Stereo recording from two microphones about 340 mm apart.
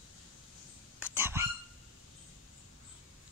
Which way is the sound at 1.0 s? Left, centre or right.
Centre.